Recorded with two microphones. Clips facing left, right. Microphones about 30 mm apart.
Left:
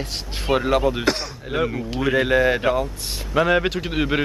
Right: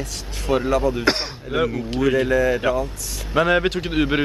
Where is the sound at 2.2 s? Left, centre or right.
Left.